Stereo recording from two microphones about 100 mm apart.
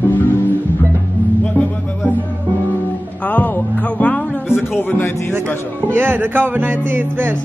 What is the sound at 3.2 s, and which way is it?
Speech, 15° left (ahead or behind).